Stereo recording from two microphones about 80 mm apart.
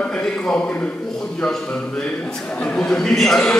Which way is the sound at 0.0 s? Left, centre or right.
Centre.